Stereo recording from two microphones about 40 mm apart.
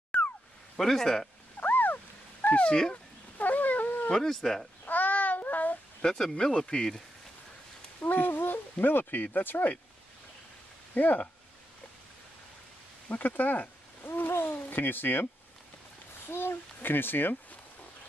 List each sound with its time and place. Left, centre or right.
0.1 s a sound: left
0.7 s speech: centre
1.6 s a sound: left
3.3 s cat: left
4.1 s speech: centre
4.8 s child singing: left
6.0 s speech: left
8.0 s speech: left
11.0 s speech: left
13.1 s a sound: left
14.8 s a child's voice: left
16.3 s a child's voice: left